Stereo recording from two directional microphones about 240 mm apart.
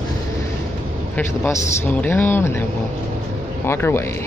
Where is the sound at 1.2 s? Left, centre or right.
Centre.